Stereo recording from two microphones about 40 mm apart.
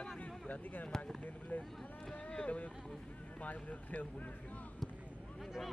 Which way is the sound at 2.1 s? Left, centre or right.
Left.